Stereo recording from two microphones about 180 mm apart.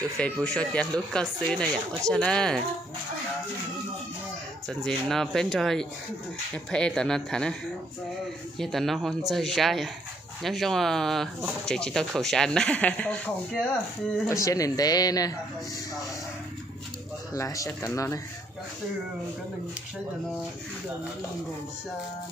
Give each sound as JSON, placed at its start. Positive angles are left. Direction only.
{"t": 0.2, "sound": "speech", "side_deg": 5}
{"t": 4.6, "sound": "speech", "side_deg": 0}
{"t": 8.5, "sound": "speech", "side_deg": 0}
{"t": 14.2, "sound": "speech", "side_deg": 15}
{"t": 17.3, "sound": "speech", "side_deg": 20}